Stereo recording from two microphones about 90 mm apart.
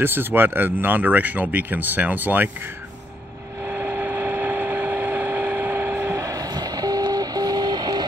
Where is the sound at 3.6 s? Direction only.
25° right (ahead or behind).